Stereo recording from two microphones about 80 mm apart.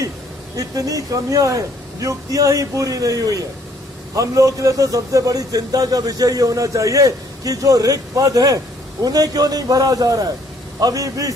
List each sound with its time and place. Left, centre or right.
0.6 s a man's voice: right